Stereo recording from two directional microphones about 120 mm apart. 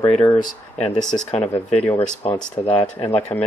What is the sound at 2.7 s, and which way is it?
Speech, 55° left (ahead or behind).